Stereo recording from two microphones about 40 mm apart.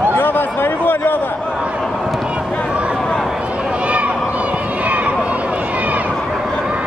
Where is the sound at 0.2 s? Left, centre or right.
Left.